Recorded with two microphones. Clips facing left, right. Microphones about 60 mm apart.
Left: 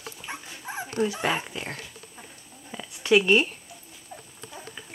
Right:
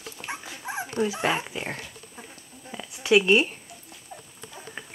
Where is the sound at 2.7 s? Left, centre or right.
Centre.